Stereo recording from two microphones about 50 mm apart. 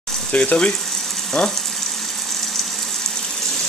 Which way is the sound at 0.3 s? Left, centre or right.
Left.